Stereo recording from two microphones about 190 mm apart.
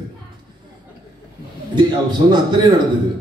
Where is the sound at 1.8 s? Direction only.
25° right (ahead or behind).